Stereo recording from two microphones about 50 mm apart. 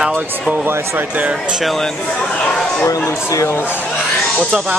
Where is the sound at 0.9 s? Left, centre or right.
Right.